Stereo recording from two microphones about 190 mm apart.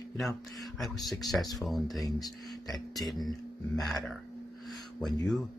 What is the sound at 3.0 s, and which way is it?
Speech, centre (ahead or behind).